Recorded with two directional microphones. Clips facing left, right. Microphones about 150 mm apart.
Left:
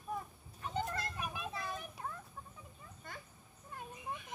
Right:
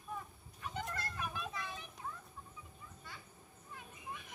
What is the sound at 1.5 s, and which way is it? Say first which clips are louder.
Children playing: left 3 dB; 40° left (ahead or behind).